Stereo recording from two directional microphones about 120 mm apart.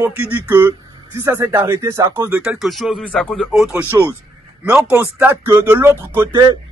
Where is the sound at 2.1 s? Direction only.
15° right (ahead or behind).